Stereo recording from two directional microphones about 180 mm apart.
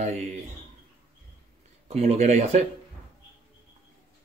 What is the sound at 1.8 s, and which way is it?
Speech, 35° right (ahead or behind).